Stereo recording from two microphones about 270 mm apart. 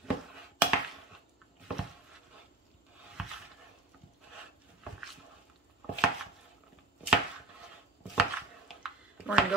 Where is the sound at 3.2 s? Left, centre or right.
Centre.